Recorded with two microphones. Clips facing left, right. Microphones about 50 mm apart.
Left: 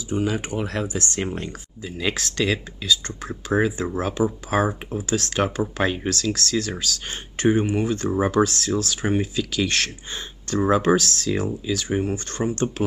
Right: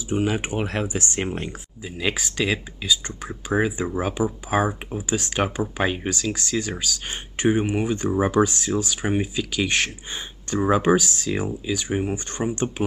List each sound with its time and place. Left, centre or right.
0.1 s speech: right
1.8 s speech: centre